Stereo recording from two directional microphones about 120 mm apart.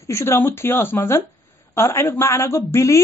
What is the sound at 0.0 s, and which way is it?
Speech, 25° left (ahead or behind).